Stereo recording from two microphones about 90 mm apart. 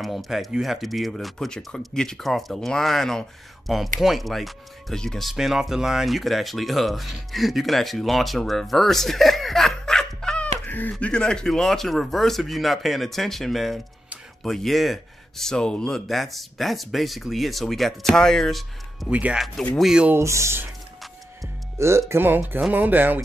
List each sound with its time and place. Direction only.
0.0 s speech: centre (ahead or behind)
5.3 s speech: 5° right (ahead or behind); by 10.9 s 20° left (ahead or behind)
10.9 s speech: 10° left (ahead or behind)
19.0 s speech: 15° right (ahead or behind)
20.2 s speech: 30° right (ahead or behind)
21.7 s speech: 30° right (ahead or behind)